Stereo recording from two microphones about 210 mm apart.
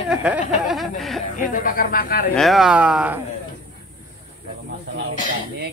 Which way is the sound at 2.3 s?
Centre (ahead or behind).